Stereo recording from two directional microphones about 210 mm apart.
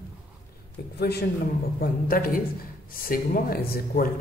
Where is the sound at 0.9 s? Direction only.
50° left (ahead or behind).